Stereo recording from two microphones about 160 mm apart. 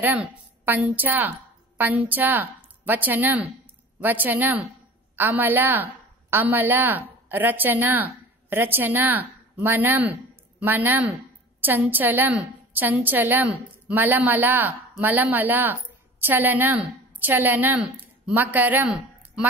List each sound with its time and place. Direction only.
0.0 s a woman's voice: 10° right (ahead or behind)